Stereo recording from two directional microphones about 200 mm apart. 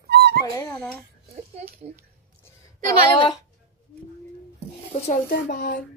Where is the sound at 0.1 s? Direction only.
55° right (ahead or behind).